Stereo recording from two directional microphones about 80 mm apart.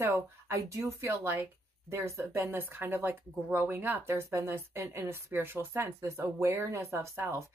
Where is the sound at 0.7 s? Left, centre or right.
Right.